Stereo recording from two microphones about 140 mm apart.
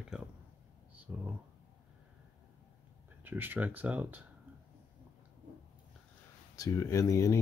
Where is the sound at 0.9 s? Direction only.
10° right (ahead or behind).